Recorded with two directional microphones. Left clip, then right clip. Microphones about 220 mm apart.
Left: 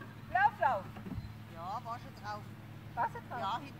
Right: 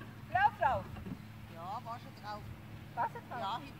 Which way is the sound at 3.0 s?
5° left (ahead or behind).